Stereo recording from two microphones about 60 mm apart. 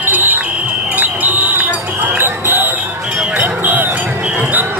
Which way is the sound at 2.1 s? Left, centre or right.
Right.